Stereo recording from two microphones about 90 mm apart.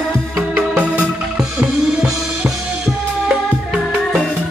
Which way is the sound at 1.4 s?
5° right (ahead or behind).